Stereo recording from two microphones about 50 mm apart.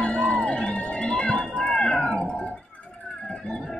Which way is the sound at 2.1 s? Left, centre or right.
Left.